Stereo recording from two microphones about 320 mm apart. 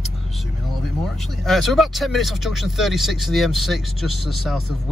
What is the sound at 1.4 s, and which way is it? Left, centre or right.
Speech, centre.